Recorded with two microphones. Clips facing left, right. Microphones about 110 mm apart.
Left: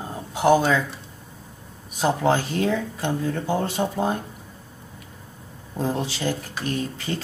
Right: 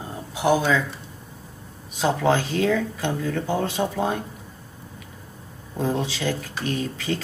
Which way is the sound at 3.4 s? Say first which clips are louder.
Even; 5° left (ahead or behind).